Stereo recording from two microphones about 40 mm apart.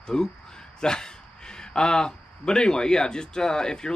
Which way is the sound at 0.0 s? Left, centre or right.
Centre.